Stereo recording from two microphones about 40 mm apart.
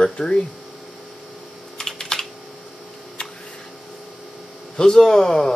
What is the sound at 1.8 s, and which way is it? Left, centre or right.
Typing, centre.